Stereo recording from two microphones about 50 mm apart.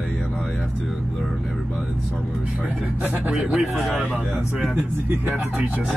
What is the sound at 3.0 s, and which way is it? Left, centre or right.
Speech, right.